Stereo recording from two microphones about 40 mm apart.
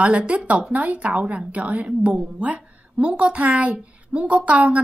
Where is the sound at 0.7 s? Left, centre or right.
Right.